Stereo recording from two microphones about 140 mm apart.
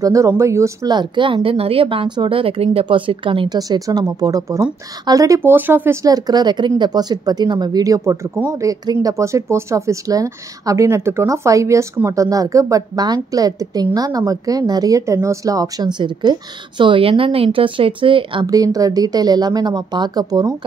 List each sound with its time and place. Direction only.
0.0 s speech: 25° right (ahead or behind)
6.0 s speech: 25° right (ahead or behind)
18.5 s speech: 25° right (ahead or behind)